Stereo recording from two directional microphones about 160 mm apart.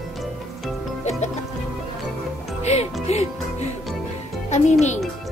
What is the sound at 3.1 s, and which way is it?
Speech, 40° left (ahead or behind).